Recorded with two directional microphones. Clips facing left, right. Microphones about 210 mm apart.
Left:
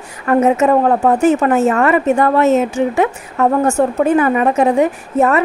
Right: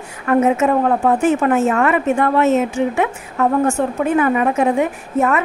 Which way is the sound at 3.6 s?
40° left (ahead or behind).